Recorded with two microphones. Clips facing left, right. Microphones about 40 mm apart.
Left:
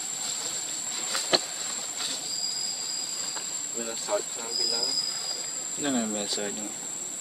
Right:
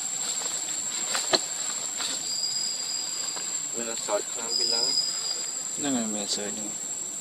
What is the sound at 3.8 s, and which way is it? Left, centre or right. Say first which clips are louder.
Vehicle: right 1 dB; centre.